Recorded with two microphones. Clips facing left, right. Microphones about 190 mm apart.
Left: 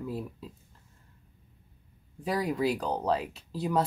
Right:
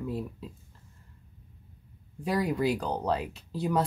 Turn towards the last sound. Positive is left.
turn(degrees=0)  # may be behind; listen again after turning